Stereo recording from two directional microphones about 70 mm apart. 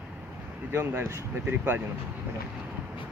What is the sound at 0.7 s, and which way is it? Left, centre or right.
Speech, right.